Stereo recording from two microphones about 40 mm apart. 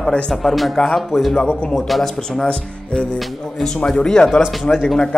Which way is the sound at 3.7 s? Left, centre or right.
Centre.